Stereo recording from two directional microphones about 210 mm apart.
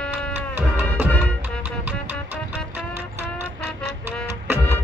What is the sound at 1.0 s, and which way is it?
Music, 10° left (ahead or behind).